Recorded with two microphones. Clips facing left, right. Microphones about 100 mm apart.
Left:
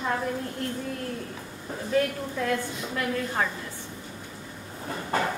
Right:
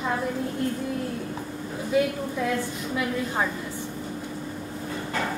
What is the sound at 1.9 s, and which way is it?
A woman's voice, 10° right (ahead or behind).